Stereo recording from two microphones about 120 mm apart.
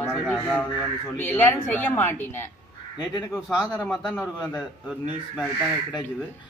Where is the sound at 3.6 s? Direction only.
10° right (ahead or behind).